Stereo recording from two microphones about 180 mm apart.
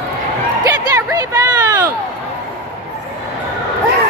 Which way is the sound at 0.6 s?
20° right (ahead or behind).